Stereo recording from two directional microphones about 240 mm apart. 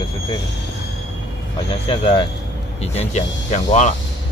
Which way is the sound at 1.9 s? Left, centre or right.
Left.